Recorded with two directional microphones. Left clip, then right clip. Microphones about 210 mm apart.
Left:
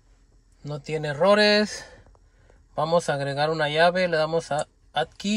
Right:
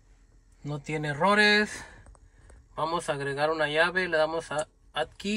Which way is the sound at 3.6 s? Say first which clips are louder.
Left 5 dB; 25° left (ahead or behind).